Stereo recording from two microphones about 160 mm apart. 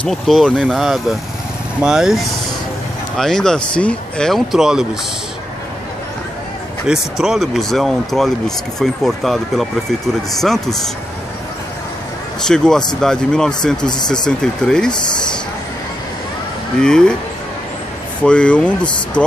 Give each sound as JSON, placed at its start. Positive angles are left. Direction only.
{"t": 0.0, "sound": "speech", "side_deg": 0}
{"t": 6.9, "sound": "speech", "side_deg": -5}
{"t": 12.4, "sound": "speech", "side_deg": 5}
{"t": 13.8, "sound": "speech", "side_deg": 25}
{"t": 14.2, "sound": "speech", "side_deg": 5}
{"t": 16.8, "sound": "speech", "side_deg": 5}
{"t": 18.2, "sound": "speech", "side_deg": 5}